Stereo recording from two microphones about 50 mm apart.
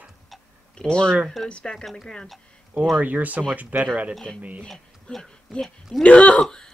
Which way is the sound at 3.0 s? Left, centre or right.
Right.